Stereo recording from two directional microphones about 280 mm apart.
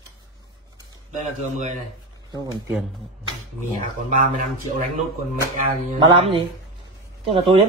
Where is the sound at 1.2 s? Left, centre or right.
Right.